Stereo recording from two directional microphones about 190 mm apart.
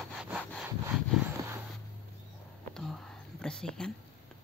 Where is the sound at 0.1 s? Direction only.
5° right (ahead or behind).